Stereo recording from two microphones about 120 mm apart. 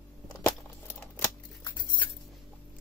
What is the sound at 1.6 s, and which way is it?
Patter, 40° left (ahead or behind).